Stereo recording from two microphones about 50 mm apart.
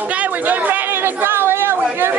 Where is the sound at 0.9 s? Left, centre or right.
Right.